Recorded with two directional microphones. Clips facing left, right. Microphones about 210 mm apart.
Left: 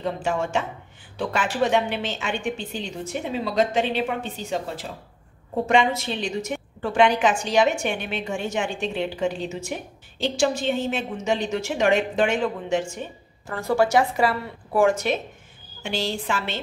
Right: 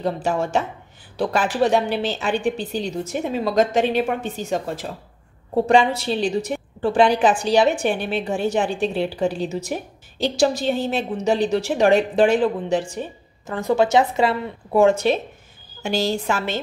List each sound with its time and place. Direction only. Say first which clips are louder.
0.0 s a woman's voice: right 3 dB; 35° right (ahead or behind)
5.7 s a woman's voice: right 3 dB; 35° right (ahead or behind)
13.5 s a woman's voice: right 3 dB; 20° right (ahead or behind)
15.8 s a woman's voice: right 5 dB; 40° right (ahead or behind)